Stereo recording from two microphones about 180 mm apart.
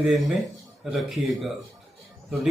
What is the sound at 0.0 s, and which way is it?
Speech, centre (ahead or behind).